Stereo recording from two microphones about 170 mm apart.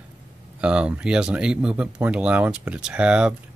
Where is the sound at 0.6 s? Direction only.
5° right (ahead or behind).